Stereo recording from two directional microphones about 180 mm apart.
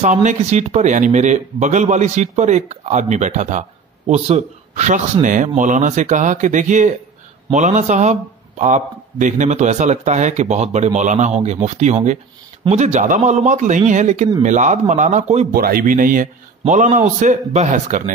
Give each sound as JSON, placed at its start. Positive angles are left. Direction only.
{"t": 0.0, "sound": "a man's voice", "side_deg": -40}
{"t": 15.5, "sound": "a man's voice", "side_deg": -55}